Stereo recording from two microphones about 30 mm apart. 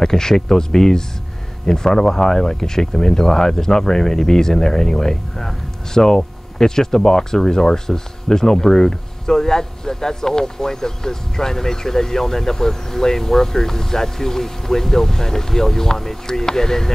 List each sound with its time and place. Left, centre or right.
0.0 s speech: centre